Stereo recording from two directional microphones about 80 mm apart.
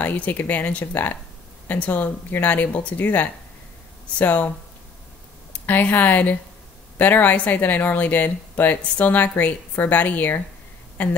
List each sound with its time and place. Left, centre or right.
0.0 s speech: left
5.5 s speech: left